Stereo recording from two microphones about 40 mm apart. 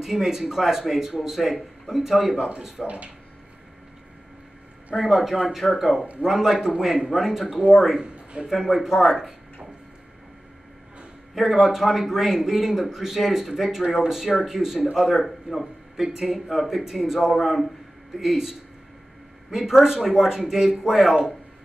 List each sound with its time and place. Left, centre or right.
0.0 s a man's voice: centre
2.8 s speech: centre
4.9 s a man's voice: centre
8.0 s a sound: right
8.5 s a man's voice: centre
11.3 s a man's voice: centre